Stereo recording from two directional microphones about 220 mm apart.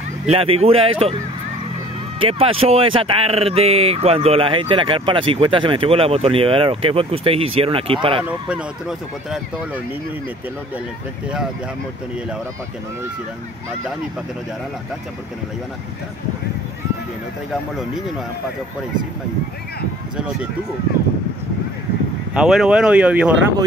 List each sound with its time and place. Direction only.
0.3 s speech: 25° right (ahead or behind)
2.1 s speech: 25° right (ahead or behind)
8.2 s speech: 5° right (ahead or behind)
22.3 s speech: centre (ahead or behind)